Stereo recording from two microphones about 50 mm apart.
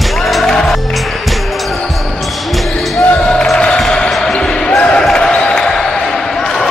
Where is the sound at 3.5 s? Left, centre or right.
Centre.